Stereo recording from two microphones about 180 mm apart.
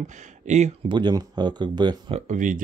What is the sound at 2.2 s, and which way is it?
Speech, 45° right (ahead or behind).